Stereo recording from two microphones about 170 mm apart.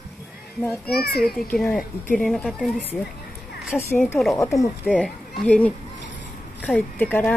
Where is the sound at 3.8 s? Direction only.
15° left (ahead or behind).